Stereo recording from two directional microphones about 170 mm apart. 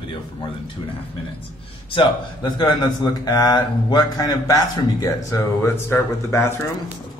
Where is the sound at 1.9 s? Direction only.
30° left (ahead or behind).